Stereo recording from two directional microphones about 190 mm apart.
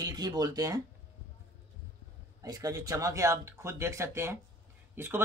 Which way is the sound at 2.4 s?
20° right (ahead or behind).